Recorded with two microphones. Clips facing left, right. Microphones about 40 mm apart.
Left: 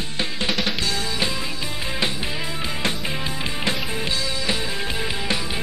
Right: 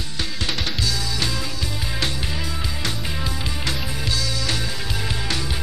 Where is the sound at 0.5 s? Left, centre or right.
Centre.